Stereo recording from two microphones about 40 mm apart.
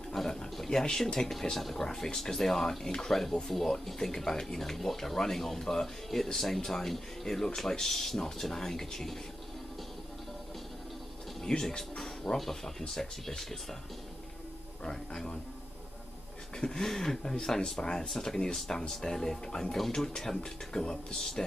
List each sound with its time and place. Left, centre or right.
0.1 s a sound: centre
1.6 s speech: centre
11.4 s speech: centre
12.0 s speech: centre
14.8 s speech: centre
16.5 s speech: centre